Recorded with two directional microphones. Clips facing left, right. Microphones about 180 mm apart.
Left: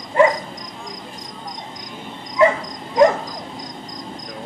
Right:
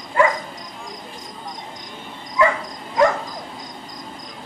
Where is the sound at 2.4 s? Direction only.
20° left (ahead or behind).